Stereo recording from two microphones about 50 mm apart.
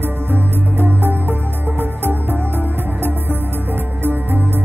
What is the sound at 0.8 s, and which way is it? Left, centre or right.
Music, right.